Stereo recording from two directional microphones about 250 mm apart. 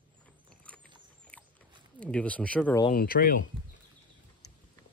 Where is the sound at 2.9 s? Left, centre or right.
Left.